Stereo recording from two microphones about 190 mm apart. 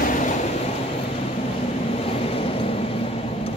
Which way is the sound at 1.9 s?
30° left (ahead or behind).